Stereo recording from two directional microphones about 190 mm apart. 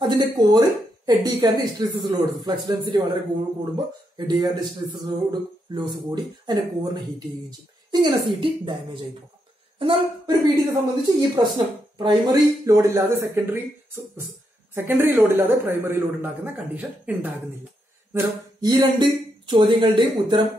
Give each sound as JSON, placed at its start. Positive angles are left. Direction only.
{"t": 0.0, "sound": "a woman's voice", "side_deg": -25}
{"t": 4.4, "sound": "a woman's voice", "side_deg": -20}
{"t": 18.1, "sound": "speech", "side_deg": -20}